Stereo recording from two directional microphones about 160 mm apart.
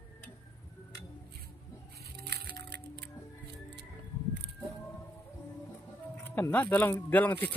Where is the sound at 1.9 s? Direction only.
90° right.